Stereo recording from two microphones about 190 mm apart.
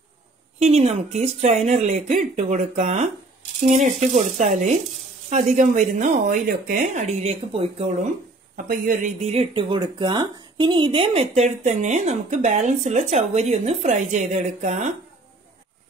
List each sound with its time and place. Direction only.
0.6 s speech: 35° right (ahead or behind)
8.6 s speech: 45° right (ahead or behind)
9.3 s speech: 30° right (ahead or behind)